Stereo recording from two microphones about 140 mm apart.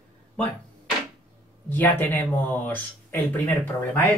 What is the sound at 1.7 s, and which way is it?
A man's voice, 15° left (ahead or behind).